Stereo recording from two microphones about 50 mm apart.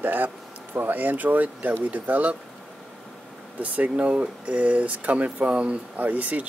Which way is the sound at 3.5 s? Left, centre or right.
Right.